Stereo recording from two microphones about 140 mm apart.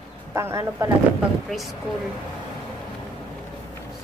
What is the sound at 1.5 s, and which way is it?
Speech, centre (ahead or behind).